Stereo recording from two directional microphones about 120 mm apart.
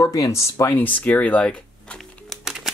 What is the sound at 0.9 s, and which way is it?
Speech, 10° left (ahead or behind).